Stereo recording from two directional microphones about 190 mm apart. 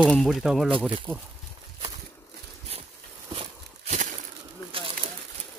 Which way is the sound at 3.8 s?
40° right (ahead or behind).